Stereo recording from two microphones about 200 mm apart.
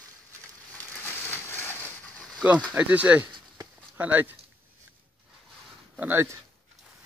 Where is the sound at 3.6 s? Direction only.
10° right (ahead or behind).